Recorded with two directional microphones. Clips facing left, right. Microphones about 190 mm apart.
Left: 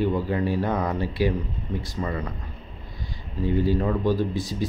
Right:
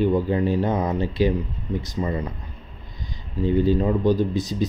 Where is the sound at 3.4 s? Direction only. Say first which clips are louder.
Right 3 dB; 20° right (ahead or behind).